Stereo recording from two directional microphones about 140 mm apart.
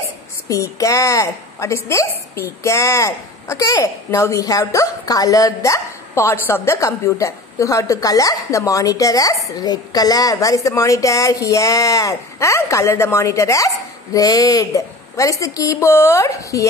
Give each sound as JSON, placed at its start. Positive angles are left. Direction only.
{"t": 0.5, "sound": "a woman's voice", "side_deg": 25}